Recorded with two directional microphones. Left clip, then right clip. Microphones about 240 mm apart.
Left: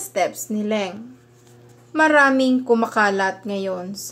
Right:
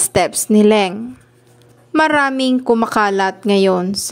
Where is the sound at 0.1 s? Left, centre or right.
Right.